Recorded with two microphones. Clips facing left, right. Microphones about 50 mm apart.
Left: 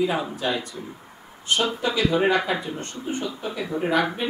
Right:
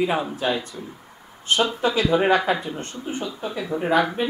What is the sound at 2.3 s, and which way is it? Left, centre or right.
Speech, right.